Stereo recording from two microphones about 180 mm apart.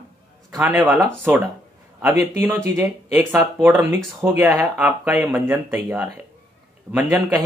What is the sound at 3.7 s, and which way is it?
Speech, 10° right (ahead or behind).